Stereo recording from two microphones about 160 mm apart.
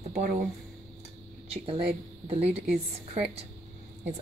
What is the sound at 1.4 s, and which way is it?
A woman's voice, 35° right (ahead or behind).